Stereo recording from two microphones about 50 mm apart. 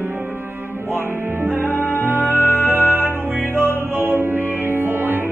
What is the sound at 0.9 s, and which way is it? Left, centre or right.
Music, right.